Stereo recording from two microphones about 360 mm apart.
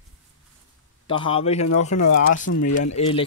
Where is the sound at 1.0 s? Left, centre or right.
Centre.